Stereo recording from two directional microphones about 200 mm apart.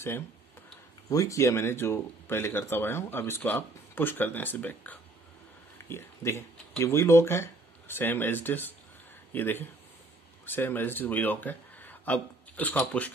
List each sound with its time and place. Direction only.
1.1 s speech: 15° left (ahead or behind)